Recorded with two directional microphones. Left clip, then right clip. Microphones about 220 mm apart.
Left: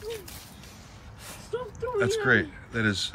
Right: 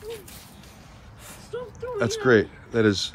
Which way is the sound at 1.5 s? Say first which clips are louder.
Left 1 dB; 40° left (ahead or behind).